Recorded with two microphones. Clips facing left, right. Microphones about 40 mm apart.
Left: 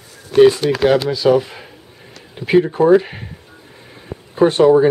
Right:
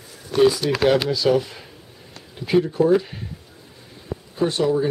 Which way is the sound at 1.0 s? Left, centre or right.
Left.